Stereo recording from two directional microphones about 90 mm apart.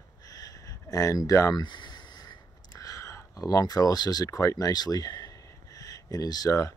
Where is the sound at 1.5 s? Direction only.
55° left (ahead or behind).